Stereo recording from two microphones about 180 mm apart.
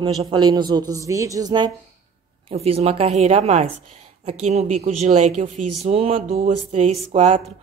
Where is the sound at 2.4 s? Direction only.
30° right (ahead or behind).